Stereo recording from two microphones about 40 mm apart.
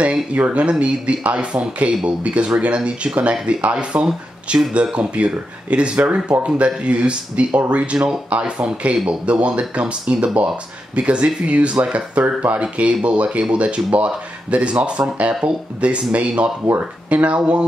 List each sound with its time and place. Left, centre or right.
0.3 s speech: right